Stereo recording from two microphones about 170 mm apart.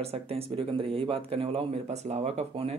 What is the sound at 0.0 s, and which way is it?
Speech, 35° right (ahead or behind).